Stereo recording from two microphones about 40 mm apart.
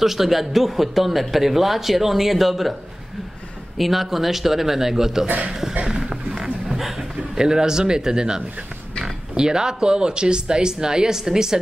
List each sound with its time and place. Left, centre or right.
0.0 s a man's voice: centre
3.7 s speech: centre
5.5 s a sound: centre
9.4 s speech: centre